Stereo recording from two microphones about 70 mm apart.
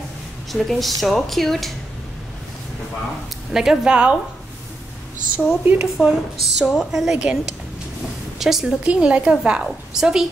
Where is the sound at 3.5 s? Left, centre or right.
Centre.